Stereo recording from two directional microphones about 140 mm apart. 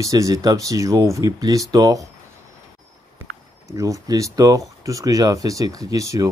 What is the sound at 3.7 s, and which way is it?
Speech, 25° right (ahead or behind).